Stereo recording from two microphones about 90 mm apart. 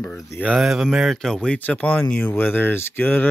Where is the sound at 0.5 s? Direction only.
5° right (ahead or behind).